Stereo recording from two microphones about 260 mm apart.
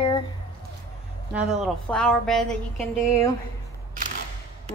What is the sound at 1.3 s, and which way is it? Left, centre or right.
Speech, centre.